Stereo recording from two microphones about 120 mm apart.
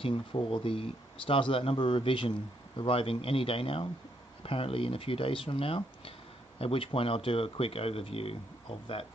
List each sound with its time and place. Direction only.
0.0 s speech: 50° left (ahead or behind)